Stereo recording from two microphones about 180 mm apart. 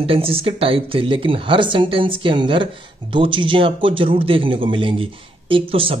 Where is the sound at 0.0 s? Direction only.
30° right (ahead or behind).